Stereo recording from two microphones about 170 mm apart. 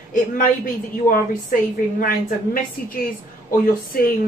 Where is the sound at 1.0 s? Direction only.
55° left (ahead or behind).